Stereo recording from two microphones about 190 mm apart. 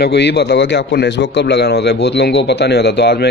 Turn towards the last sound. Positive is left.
turn(degrees=60)  # may be behind; listen again after turning